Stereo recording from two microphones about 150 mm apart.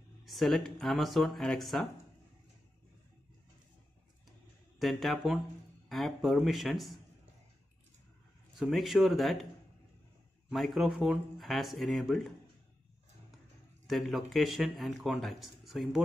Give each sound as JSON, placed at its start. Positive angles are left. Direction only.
{"t": 0.2, "sound": "a man's voice", "side_deg": 0}
{"t": 4.7, "sound": "a man's voice", "side_deg": 0}
{"t": 8.5, "sound": "a man's voice", "side_deg": 0}
{"t": 10.5, "sound": "a man's voice", "side_deg": 0}
{"t": 13.8, "sound": "a man's voice", "side_deg": 0}